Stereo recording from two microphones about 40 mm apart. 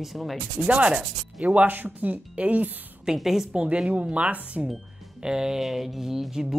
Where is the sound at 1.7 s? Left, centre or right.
Right.